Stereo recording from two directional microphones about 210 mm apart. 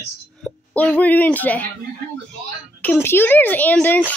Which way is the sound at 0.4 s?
5° left (ahead or behind).